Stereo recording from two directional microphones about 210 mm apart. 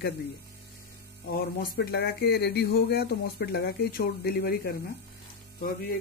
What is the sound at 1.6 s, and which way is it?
Speech, 50° left (ahead or behind).